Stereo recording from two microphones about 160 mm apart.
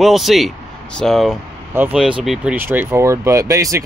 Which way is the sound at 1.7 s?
10° right (ahead or behind).